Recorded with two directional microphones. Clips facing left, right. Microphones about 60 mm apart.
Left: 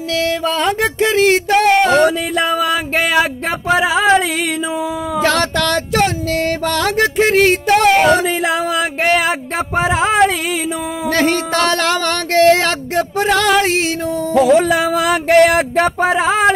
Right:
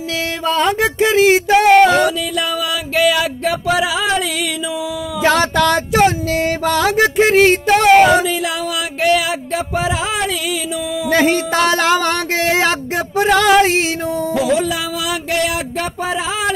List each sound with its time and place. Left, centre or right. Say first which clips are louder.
0.5 s music: right 1 dB; centre
2.0 s music: left 3 dB; left
5.2 s music: right 3 dB; centre
8.3 s music: left 3 dB; left
11.1 s a sound: right 1 dB; centre
14.3 s music: left 7 dB; left